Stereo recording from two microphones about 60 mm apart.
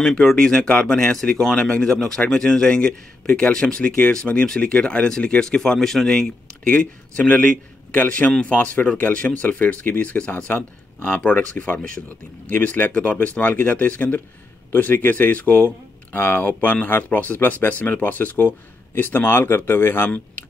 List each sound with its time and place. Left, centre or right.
0.0 s speech: centre; by 8.3 s left
8.3 s speech: centre; by 12.9 s left
12.9 s speech: left